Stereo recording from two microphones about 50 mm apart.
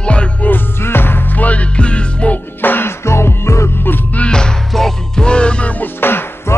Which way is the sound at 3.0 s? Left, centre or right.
Left.